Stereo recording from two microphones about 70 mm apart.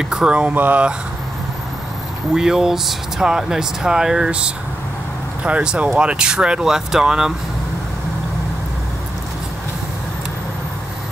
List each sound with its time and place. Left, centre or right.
0.0 s speech: centre
0.6 s speech: right
2.3 s speech: centre